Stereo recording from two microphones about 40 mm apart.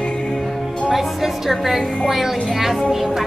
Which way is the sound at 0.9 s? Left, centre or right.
Centre.